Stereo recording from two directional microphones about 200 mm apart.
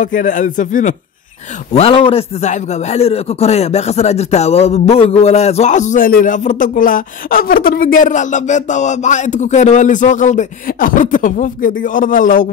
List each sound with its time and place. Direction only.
0.0 s a man's voice: 40° left (ahead or behind)
1.7 s a man's voice: 30° left (ahead or behind)